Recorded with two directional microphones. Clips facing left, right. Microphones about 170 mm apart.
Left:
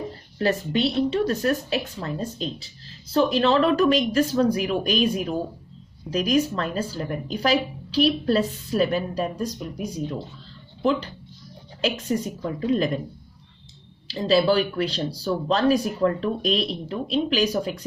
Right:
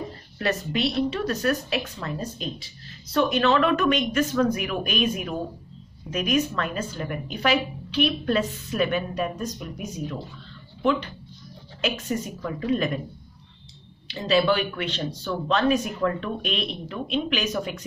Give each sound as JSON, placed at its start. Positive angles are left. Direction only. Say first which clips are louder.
{"t": 0.1, "sound": "a woman's voice", "louder": "left 5 dB", "side_deg": 30}
{"t": 14.0, "sound": "a woman's voice", "louder": "left 2 dB", "side_deg": 30}